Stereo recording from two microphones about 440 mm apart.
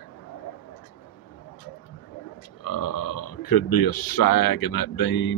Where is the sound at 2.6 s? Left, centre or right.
Left.